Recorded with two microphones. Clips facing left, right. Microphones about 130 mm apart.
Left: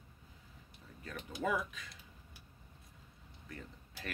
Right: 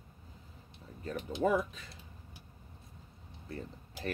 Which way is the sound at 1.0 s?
30° right (ahead or behind).